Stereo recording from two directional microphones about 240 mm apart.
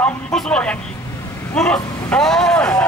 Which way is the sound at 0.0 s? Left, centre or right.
Centre.